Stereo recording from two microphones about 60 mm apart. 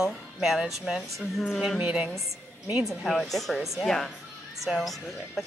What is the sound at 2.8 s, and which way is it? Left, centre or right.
Speech, centre.